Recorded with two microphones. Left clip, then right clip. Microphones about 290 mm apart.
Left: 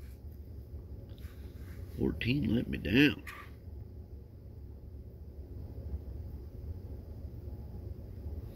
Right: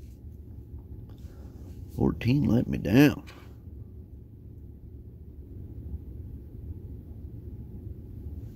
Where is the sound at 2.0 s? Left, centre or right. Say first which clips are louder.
Right 6 dB; right.